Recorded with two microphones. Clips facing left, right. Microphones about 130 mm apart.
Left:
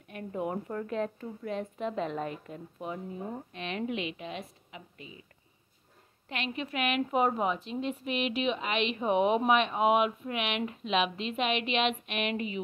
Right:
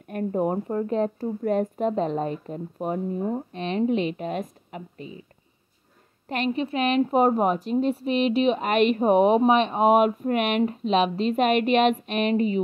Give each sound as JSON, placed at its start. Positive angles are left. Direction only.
{"t": 0.1, "sound": "a woman's voice", "side_deg": -45}
{"t": 1.4, "sound": "a woman's voice", "side_deg": -45}
{"t": 6.2, "sound": "a woman's voice", "side_deg": -40}